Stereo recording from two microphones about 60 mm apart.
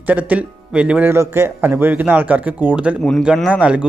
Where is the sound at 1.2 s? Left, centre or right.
Right.